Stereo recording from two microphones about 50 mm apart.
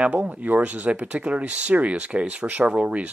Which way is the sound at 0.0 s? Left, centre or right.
Right.